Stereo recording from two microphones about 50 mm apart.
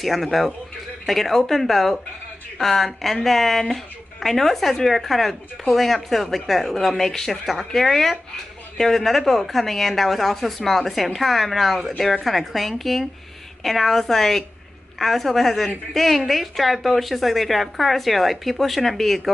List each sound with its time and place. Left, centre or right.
0.0 s speech: centre